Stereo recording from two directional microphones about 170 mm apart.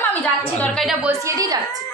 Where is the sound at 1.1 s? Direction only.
20° right (ahead or behind).